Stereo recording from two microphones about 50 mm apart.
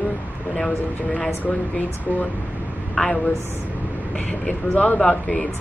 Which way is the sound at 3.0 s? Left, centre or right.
Centre.